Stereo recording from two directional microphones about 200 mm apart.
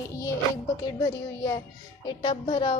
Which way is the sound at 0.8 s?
20° left (ahead or behind).